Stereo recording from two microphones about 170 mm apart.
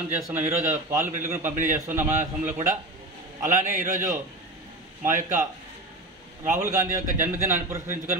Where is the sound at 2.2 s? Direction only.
45° right (ahead or behind).